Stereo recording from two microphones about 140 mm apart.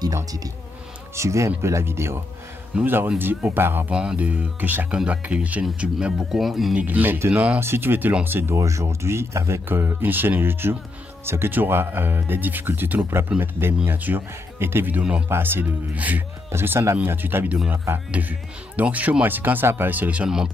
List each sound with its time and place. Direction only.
0.0 s speech: 25° right (ahead or behind); by 20.4 s 5° right (ahead or behind)